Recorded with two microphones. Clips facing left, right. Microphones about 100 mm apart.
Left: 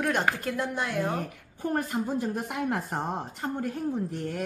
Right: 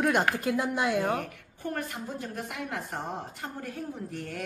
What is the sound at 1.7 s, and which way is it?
Speech, 40° left (ahead or behind).